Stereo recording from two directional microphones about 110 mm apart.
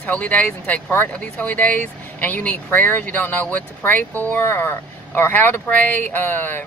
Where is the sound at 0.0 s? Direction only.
15° left (ahead or behind).